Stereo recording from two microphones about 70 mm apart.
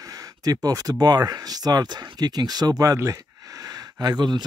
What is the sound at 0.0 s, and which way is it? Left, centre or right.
Speech, right.